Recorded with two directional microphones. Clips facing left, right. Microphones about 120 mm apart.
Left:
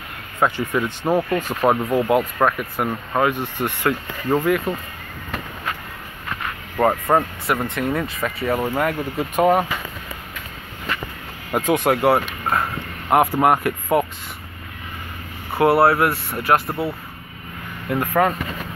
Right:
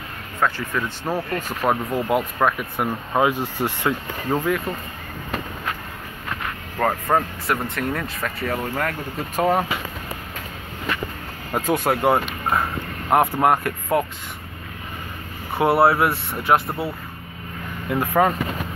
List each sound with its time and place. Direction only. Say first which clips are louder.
0.4 s speech: left 3 dB; 20° left (ahead or behind); by 3.4 s 10° right (ahead or behind)
3.6 s speech: left 2 dB; centre (ahead or behind)
6.8 s speech: left 3 dB; 5° left (ahead or behind)
11.6 s speech: left 2 dB; 5° right (ahead or behind)
15.5 s speech: left 2 dB; centre (ahead or behind)